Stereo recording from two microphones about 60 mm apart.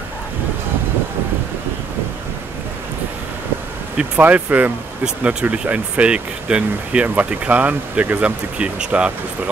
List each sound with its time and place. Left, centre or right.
4.2 s speech: right